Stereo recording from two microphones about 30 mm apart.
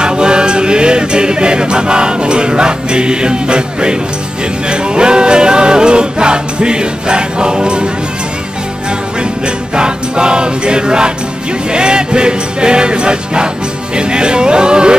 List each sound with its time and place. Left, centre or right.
0.0 s choir: right
4.6 s music: right
9.8 s music: right